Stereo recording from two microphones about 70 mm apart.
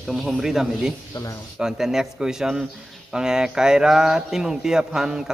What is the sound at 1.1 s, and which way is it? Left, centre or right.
Speech, left.